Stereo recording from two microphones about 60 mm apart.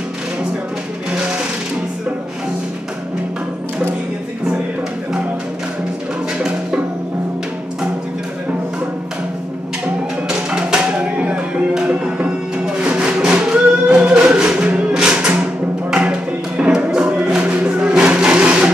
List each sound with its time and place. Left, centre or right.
10.2 s music: centre
17.6 s vehicle: centre